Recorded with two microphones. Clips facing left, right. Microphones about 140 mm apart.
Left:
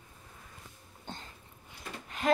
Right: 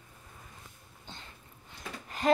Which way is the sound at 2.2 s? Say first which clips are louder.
Right 2 dB; centre (ahead or behind).